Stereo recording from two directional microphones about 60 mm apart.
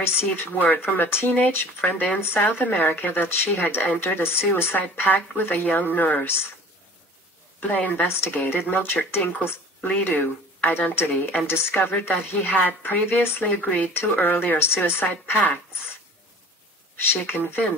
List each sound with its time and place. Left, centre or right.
0.0 s speech: left
7.6 s speech: left
17.1 s speech: left